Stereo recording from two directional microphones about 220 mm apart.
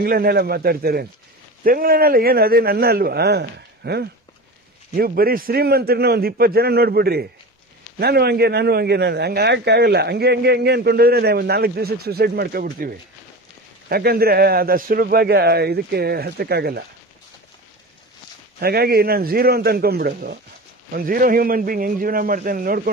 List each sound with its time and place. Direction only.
0.0 s a man's voice: 45° right (ahead or behind)
18.6 s a man's voice: 45° right (ahead or behind)